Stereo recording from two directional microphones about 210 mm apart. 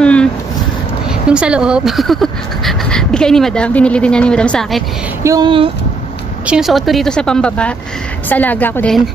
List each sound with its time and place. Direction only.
0.0 s a sound: 5° left (ahead or behind)
1.3 s speech: 5° right (ahead or behind)
5.2 s speech: 20° right (ahead or behind)
6.4 s a woman's voice: 5° right (ahead or behind)